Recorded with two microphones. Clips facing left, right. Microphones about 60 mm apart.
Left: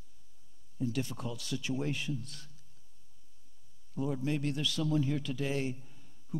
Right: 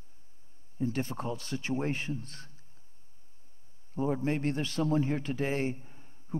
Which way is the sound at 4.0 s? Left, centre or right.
Right.